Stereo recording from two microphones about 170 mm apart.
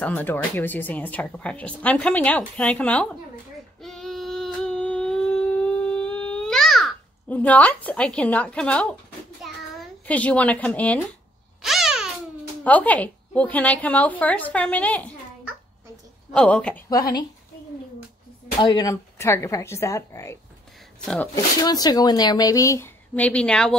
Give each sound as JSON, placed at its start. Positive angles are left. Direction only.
{"t": 0.0, "sound": "speech", "side_deg": 10}
{"t": 3.8, "sound": "a sound", "side_deg": 0}
{"t": 11.6, "sound": "babbling", "side_deg": 0}
{"t": 12.6, "sound": "speech", "side_deg": 10}
{"t": 16.3, "sound": "speech", "side_deg": 5}
{"t": 18.6, "sound": "speech", "side_deg": 25}
{"t": 21.0, "sound": "speech", "side_deg": 5}
{"t": 21.6, "sound": "a woman's voice", "side_deg": 25}